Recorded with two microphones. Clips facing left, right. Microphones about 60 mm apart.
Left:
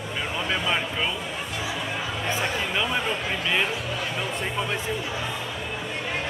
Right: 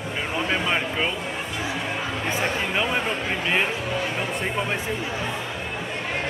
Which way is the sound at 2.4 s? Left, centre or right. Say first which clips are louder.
Right 3 dB; right.